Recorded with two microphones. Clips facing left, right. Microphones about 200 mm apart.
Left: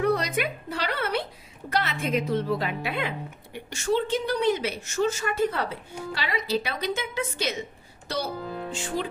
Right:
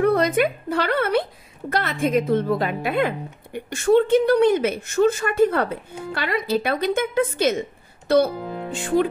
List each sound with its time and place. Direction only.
0.0 s music: 50° right (ahead or behind)
1.7 s a woman's voice: 50° right (ahead or behind)
8.7 s speech: 55° right (ahead or behind)